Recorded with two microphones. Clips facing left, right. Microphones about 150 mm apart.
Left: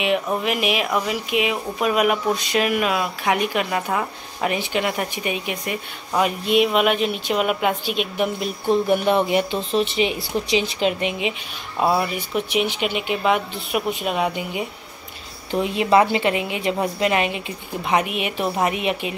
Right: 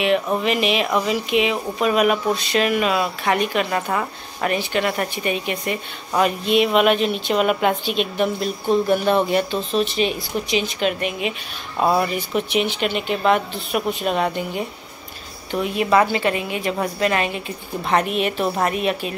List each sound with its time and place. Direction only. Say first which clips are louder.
0.3 s a woman's voice: right 2 dB; 10° left (ahead or behind); by 11.1 s 25° left (ahead or behind)
11.8 s speech: right 1 dB; 5° left (ahead or behind)
15.5 s a woman's voice: left 1 dB; 25° left (ahead or behind)